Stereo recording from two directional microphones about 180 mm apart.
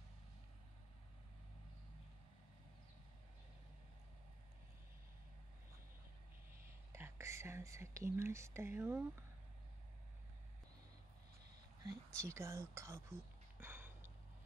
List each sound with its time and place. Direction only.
6.9 s speech: 15° right (ahead or behind)
11.8 s speech: 20° right (ahead or behind)
13.6 s a sound: 10° right (ahead or behind)